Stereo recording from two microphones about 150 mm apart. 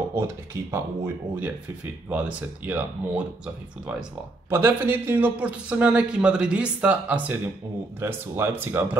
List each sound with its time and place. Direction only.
0.1 s a man's voice: 15° right (ahead or behind)
4.5 s a man's voice: 15° right (ahead or behind)